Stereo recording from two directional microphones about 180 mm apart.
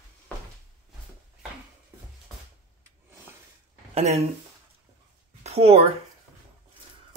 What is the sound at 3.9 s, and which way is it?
Speech, 35° right (ahead or behind).